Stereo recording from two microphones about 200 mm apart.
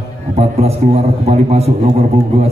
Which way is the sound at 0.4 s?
30° right (ahead or behind).